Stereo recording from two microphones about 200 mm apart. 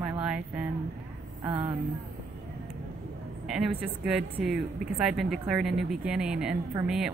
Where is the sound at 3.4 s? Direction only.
Centre (ahead or behind).